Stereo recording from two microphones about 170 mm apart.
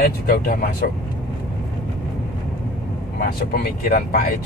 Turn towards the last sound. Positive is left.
turn(degrees=65)  # may be behind; listen again after turning